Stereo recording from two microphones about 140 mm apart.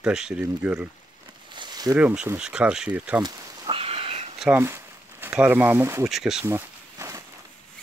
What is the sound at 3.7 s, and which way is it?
Sniff, 40° right (ahead or behind).